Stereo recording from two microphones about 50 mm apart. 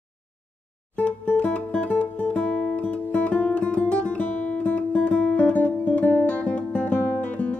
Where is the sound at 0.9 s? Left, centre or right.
Left.